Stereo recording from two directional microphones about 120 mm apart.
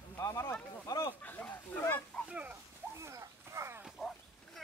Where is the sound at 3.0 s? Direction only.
25° right (ahead or behind).